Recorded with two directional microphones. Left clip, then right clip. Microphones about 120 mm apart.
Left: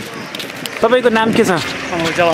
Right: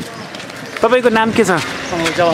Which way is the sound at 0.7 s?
5° right (ahead or behind).